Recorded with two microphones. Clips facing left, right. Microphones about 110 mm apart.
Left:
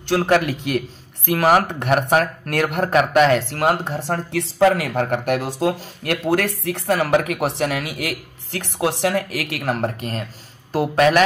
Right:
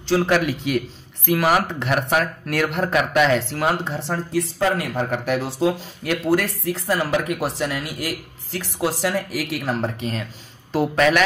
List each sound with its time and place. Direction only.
0.1 s speech: 50° left (ahead or behind)
4.3 s speech: 85° left
5.1 s speech: 55° left (ahead or behind)